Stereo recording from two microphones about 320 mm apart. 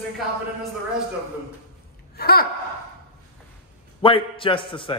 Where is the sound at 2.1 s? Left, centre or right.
Left.